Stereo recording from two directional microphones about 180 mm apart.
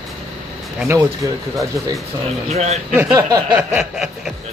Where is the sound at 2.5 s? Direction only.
35° right (ahead or behind).